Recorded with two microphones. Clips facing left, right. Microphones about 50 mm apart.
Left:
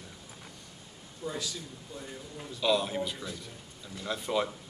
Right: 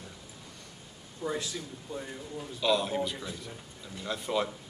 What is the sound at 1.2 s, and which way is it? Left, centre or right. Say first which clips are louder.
Speech: right 3 dB; right.